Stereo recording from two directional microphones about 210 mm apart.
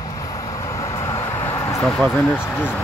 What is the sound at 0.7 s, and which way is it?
Vehicle, 15° left (ahead or behind).